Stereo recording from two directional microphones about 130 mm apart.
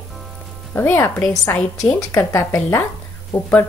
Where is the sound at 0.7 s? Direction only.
15° left (ahead or behind).